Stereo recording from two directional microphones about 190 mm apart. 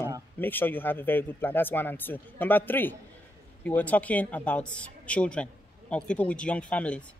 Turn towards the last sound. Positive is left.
turn(degrees=5)  # may be behind; listen again after turning